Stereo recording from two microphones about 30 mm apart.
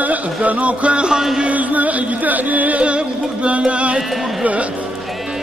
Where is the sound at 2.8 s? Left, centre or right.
Right.